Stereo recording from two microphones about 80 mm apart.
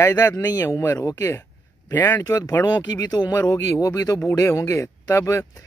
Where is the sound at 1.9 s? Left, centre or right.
Left.